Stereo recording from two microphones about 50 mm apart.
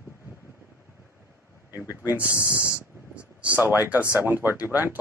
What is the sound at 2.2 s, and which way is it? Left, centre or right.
Speech, left.